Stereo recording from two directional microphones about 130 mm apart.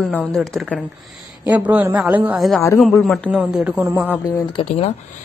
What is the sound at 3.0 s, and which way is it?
Speech, centre (ahead or behind).